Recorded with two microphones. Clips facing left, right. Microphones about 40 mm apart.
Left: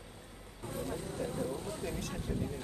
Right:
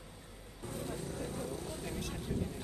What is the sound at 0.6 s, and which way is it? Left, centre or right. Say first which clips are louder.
Vehicle: left 2 dB; left.